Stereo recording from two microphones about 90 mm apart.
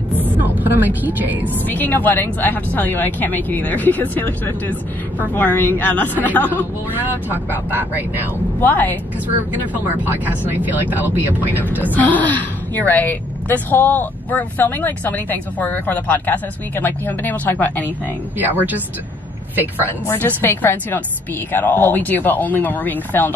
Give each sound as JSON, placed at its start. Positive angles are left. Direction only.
{"t": 0.2, "sound": "vehicle", "side_deg": -20}
{"t": 1.7, "sound": "speech", "side_deg": 20}
{"t": 7.0, "sound": "speech", "side_deg": -20}
{"t": 8.5, "sound": "speech", "side_deg": 20}
{"t": 9.3, "sound": "speech", "side_deg": -20}
{"t": 11.9, "sound": "speech", "side_deg": 20}
{"t": 19.6, "sound": "speech", "side_deg": 25}